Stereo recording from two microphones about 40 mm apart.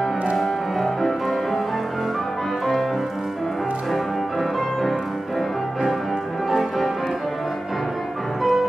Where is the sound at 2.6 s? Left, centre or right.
Centre.